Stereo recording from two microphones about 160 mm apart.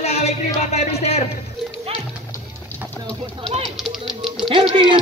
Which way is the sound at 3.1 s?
35° right (ahead or behind).